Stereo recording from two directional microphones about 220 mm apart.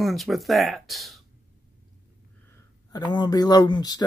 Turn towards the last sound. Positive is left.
turn(degrees=20)  # may be behind; listen again after turning